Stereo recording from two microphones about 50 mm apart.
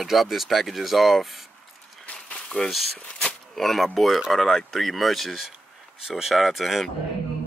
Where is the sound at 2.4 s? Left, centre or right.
Centre.